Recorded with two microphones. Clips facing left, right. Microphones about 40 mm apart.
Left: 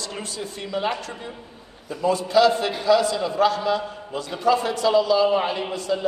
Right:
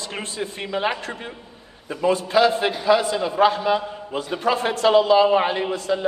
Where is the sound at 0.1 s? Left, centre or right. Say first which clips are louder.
Right 3 dB; right.